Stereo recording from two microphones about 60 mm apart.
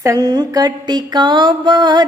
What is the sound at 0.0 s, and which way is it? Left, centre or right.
Music, right.